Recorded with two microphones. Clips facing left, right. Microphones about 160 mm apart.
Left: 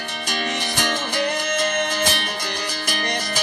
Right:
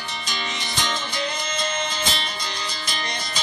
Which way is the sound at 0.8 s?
65° left (ahead or behind).